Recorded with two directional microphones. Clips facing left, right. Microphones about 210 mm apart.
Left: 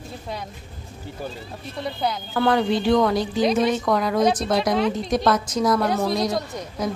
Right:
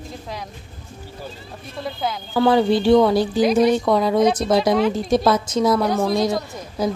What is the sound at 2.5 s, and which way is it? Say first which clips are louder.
Speech: right 5 dB; 30° right (ahead or behind).